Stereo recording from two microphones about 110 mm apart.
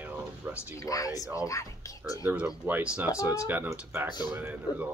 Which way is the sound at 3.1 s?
30° left (ahead or behind).